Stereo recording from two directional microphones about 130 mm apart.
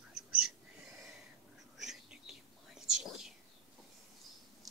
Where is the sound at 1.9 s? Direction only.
5° right (ahead or behind).